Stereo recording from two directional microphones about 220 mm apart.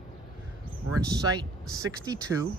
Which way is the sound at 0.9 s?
15° right (ahead or behind).